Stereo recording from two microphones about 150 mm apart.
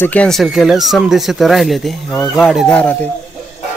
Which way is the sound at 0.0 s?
10° left (ahead or behind).